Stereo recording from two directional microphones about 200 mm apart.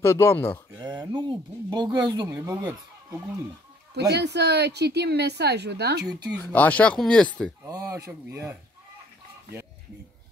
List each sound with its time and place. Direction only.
0.0 s speech: 15° left (ahead or behind)
0.7 s speech: 20° right (ahead or behind)
4.1 s a woman's voice: 55° right (ahead or behind)
6.3 s speech: 10° left (ahead or behind)
7.6 s speech: 15° right (ahead or behind)